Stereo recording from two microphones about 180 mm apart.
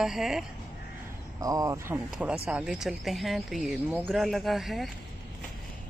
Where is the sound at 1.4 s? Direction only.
20° right (ahead or behind).